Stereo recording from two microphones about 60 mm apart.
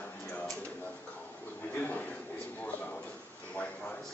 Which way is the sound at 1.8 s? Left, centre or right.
Left.